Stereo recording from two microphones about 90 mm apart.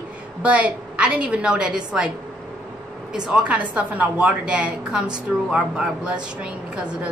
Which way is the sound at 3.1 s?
10° right (ahead or behind).